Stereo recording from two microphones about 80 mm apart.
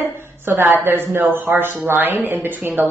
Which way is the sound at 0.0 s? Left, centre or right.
Right.